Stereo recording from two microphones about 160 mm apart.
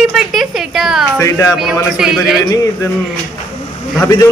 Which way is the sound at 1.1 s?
20° left (ahead or behind).